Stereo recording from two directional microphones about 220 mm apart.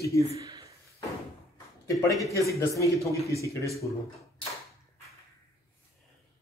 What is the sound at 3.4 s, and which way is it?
Speech, 15° left (ahead or behind).